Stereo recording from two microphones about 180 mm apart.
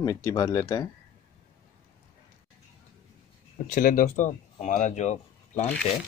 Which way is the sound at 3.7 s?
45° left (ahead or behind).